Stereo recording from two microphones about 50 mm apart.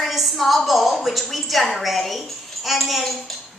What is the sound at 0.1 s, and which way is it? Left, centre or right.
A woman's voice, centre.